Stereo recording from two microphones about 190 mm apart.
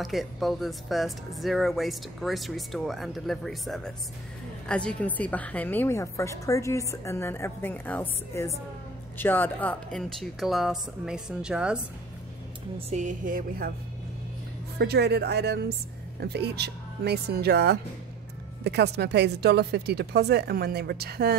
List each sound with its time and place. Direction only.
0.0 s a woman's voice: centre (ahead or behind)
12.7 s music: 40° right (ahead or behind)
14.8 s speech: 60° right (ahead or behind)